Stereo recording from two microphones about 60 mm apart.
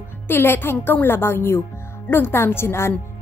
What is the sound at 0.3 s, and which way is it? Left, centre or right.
A woman's voice, left.